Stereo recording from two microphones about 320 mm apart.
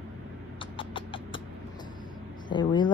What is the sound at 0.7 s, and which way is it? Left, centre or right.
Beatboxing, centre.